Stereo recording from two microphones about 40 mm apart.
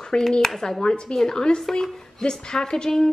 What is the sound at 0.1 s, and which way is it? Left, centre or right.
A woman's voice, centre.